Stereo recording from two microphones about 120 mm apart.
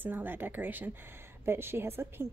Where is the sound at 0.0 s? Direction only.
15° right (ahead or behind).